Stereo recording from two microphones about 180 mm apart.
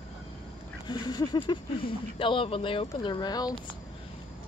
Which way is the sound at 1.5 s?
30° left (ahead or behind).